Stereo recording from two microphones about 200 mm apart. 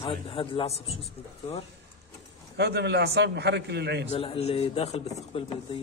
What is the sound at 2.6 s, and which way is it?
A man's voice, 55° right (ahead or behind).